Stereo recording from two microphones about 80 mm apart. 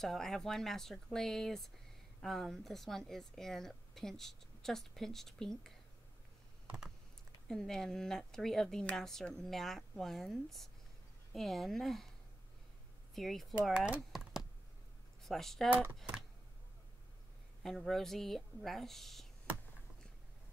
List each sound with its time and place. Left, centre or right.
0.0 s a woman's voice: centre
7.4 s a woman's voice: centre
13.1 s a woman's voice: centre
13.7 s speech: centre
15.2 s a woman's voice: centre
15.7 s speech: right
17.6 s a woman's voice: centre